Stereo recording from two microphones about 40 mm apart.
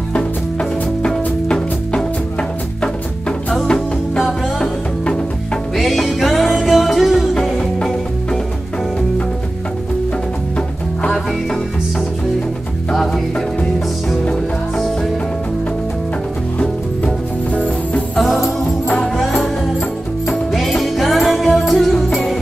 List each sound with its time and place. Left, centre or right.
0.1 s music: left
5.8 s music: centre
7.4 s music: centre
18.1 s music: centre
20.5 s music: centre